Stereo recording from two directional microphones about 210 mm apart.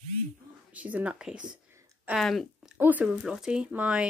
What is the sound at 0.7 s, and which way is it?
Speech, 5° right (ahead or behind).